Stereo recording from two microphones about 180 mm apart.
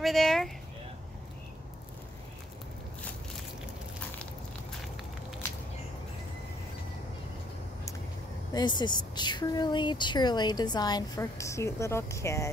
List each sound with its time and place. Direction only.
0.0 s speech: centre (ahead or behind)
8.5 s a woman's voice: 25° left (ahead or behind)